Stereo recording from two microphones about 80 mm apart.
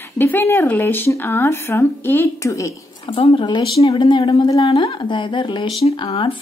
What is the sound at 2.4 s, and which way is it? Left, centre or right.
Speech, left.